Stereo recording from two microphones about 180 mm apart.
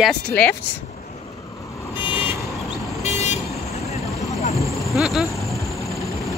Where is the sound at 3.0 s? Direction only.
40° left (ahead or behind).